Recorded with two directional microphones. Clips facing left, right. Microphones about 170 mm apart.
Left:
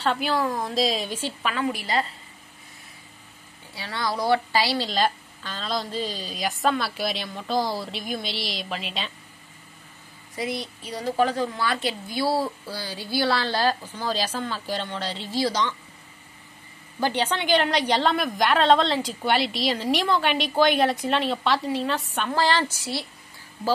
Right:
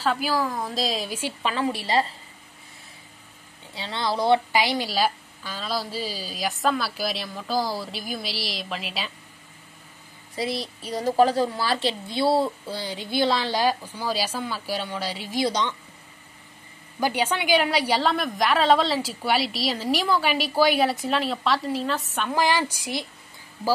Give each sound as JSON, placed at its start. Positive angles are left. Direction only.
{"t": 0.0, "sound": "a woman's voice", "side_deg": -5}
{"t": 1.4, "sound": "a woman's voice", "side_deg": -30}
{"t": 3.7, "sound": "a woman's voice", "side_deg": -25}
{"t": 4.5, "sound": "a woman's voice", "side_deg": -15}
{"t": 10.3, "sound": "a woman's voice", "side_deg": -30}
{"t": 17.0, "sound": "a woman's voice", "side_deg": -10}
{"t": 22.3, "sound": "a woman's voice", "side_deg": -10}